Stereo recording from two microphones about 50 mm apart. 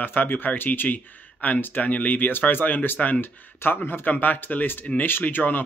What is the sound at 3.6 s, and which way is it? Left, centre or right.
Speech, left.